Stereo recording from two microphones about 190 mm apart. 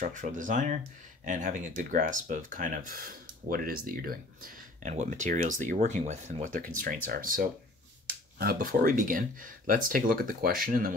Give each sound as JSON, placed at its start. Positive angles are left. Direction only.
{"t": 0.0, "sound": "speech", "side_deg": -40}